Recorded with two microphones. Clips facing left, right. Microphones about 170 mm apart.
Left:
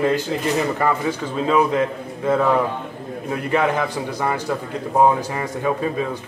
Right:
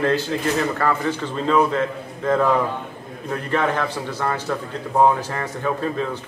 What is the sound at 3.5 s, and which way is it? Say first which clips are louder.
Speech: left 2 dB; 10° left (ahead or behind).